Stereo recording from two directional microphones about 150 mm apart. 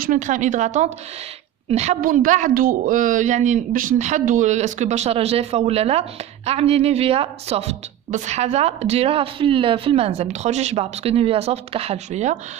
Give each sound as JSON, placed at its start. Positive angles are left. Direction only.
{"t": 0.0, "sound": "a woman's voice", "side_deg": -65}
{"t": 2.0, "sound": "a woman's voice", "side_deg": -65}